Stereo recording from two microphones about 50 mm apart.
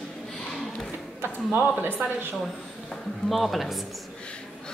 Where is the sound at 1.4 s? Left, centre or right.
Right.